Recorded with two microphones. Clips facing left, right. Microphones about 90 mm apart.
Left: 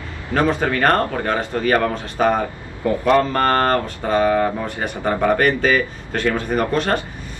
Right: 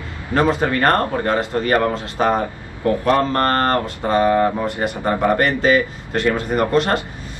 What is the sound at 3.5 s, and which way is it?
Speech, 15° left (ahead or behind).